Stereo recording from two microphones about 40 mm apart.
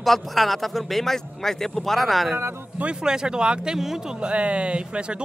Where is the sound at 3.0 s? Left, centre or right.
Centre.